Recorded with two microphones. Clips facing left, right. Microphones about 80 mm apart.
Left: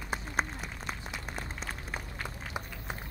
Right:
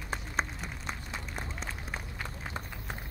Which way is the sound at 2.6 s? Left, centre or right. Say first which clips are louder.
Left 3 dB; centre.